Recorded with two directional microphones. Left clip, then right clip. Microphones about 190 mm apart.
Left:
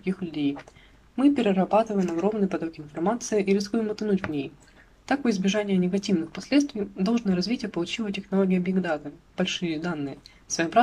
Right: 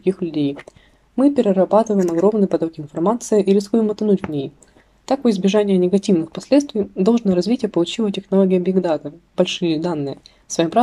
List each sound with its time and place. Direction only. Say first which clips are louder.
0.0 s speech: right 9 dB; 20° right (ahead or behind)